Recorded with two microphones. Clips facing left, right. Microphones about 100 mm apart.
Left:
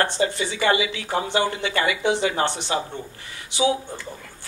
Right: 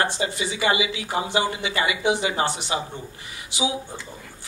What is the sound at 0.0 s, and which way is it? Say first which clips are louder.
A woman's voice: left 2 dB; 15° right (ahead or behind).